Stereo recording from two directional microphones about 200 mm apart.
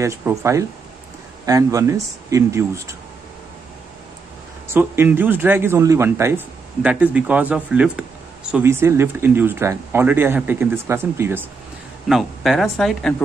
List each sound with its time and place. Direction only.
0.0 s a man's voice: 15° right (ahead or behind)
4.6 s a man's voice: 10° right (ahead or behind)
12.1 s speech: centre (ahead or behind)